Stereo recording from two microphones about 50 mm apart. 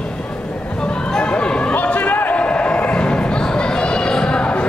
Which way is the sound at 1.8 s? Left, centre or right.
Left.